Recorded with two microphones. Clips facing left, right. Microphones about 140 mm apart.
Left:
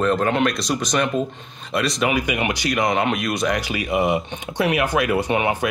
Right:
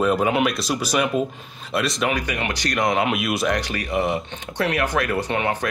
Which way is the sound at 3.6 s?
10° left (ahead or behind).